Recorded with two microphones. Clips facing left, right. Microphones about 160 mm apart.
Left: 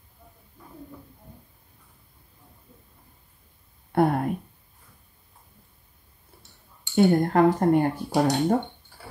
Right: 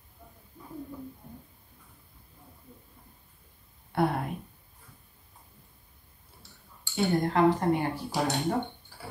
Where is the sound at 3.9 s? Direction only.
50° left (ahead or behind).